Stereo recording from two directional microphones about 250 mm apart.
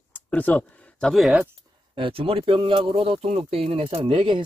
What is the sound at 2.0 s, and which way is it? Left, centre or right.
Speech, right.